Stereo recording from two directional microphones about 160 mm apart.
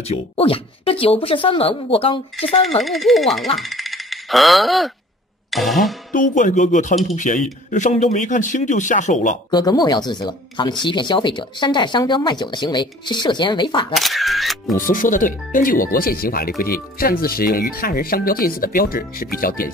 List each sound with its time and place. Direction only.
0.0 s speech: 40° left (ahead or behind)
2.8 s speech: centre (ahead or behind)
5.5 s music: centre (ahead or behind)
6.1 s speech: 55° left (ahead or behind)
9.5 s speech: 25° left (ahead or behind)
13.9 s speech: centre (ahead or behind)
14.8 s speech: 60° left (ahead or behind)